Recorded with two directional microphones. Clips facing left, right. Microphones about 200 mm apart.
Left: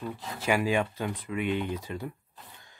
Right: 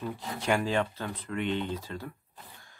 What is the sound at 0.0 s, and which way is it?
Speech, centre (ahead or behind).